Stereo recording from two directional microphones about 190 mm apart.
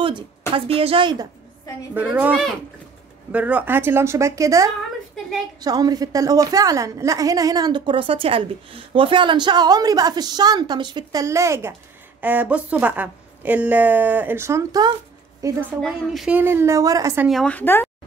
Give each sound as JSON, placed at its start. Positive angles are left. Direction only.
{"t": 0.6, "sound": "a woman's voice", "side_deg": -30}
{"t": 2.0, "sound": "a woman's voice", "side_deg": -10}
{"t": 15.8, "sound": "a woman's voice", "side_deg": 0}
{"t": 17.3, "sound": "a woman's voice", "side_deg": 5}